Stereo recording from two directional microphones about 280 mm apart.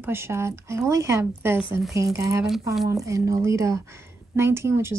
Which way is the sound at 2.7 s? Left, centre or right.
Centre.